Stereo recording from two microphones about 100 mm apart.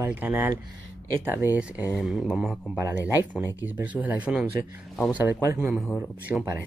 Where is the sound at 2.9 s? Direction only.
20° right (ahead or behind).